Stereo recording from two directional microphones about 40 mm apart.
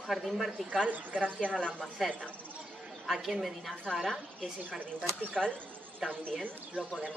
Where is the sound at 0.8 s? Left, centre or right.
Right.